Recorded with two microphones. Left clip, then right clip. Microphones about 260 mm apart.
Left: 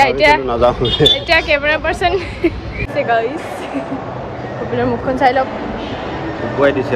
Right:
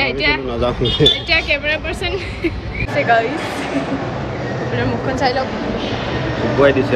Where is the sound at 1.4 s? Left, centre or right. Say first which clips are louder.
Left 4 dB; centre.